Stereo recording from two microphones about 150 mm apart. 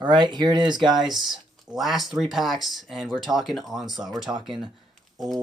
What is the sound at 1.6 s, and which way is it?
Speech, centre (ahead or behind).